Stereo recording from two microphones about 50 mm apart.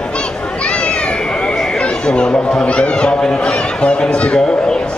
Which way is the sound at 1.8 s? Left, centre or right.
Centre.